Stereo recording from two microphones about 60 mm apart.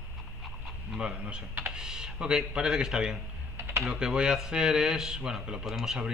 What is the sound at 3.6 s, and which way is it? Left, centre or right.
Typing, right.